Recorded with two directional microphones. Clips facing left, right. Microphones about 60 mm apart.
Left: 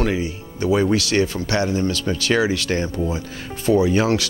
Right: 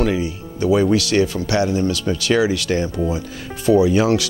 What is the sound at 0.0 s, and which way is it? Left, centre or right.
Speech, left.